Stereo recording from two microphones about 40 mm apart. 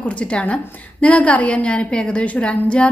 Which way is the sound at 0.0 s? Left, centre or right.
Left.